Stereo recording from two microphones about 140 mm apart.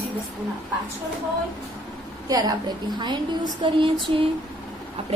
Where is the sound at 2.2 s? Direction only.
25° right (ahead or behind).